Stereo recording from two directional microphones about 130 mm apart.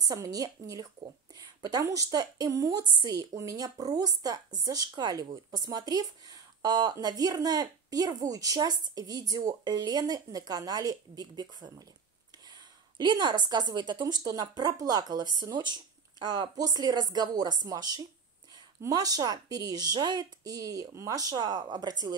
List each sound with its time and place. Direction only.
0.0 s a woman's voice: 30° right (ahead or behind)